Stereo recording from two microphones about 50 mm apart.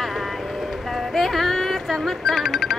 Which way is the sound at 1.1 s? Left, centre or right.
Centre.